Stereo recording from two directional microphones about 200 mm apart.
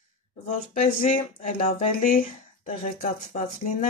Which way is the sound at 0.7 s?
35° left (ahead or behind).